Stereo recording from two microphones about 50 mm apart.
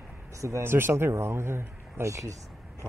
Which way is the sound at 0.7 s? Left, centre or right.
Right.